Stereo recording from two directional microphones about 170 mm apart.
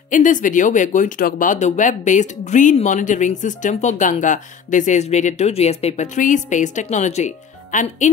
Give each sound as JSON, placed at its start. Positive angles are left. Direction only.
{"t": 0.1, "sound": "speech", "side_deg": 50}